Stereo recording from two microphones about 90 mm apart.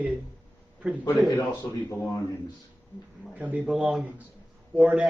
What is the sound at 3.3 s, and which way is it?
Speech, 20° right (ahead or behind).